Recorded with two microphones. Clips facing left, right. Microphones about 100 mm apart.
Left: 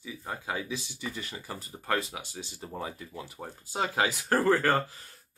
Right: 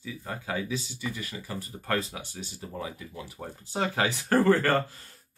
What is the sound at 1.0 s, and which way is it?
Speech, 25° left (ahead or behind).